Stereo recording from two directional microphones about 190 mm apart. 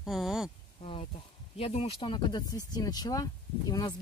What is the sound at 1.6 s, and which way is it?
Speech, 30° left (ahead or behind).